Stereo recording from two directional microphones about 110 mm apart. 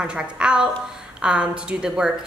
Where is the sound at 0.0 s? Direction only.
10° right (ahead or behind).